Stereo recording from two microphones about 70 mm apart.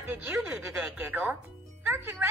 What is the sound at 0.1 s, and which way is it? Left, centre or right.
Speech, right.